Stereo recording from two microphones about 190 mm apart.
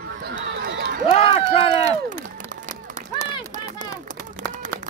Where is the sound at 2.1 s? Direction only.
40° right (ahead or behind).